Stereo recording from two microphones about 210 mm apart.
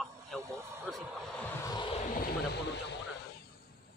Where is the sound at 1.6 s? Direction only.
20° left (ahead or behind); by 2.9 s 50° left (ahead or behind).